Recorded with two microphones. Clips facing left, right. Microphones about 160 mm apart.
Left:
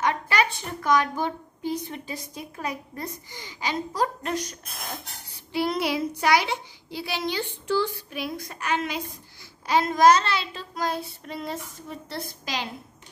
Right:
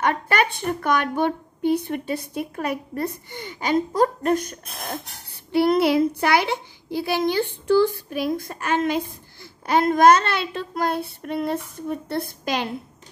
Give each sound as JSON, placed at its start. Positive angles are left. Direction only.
{"t": 0.0, "sound": "a woman's voice", "side_deg": -55}